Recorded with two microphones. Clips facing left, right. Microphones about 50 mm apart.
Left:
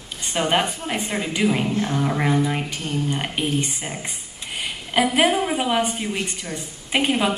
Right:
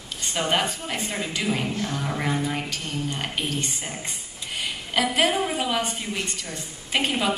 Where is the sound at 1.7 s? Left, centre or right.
Left.